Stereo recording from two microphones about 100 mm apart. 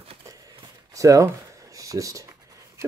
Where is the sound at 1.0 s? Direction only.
35° right (ahead or behind).